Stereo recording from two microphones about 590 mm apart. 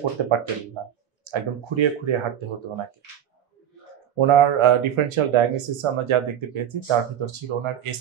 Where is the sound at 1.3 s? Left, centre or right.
Right.